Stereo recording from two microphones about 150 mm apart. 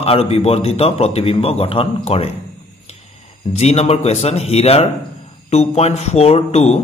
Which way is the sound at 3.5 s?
45° left (ahead or behind).